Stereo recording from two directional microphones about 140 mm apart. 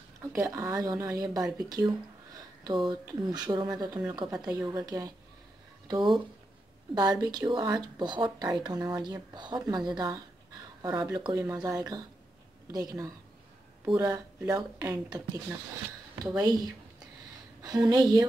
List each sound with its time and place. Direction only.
0.5 s speech: 25° right (ahead or behind)